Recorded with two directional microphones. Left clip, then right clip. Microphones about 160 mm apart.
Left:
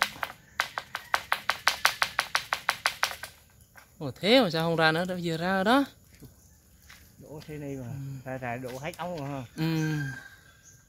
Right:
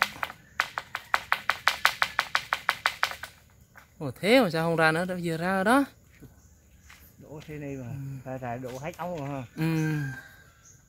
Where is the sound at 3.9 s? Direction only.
5° right (ahead or behind).